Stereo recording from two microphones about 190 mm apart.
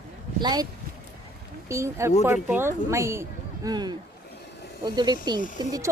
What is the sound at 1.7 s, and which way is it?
Speech, 15° right (ahead or behind).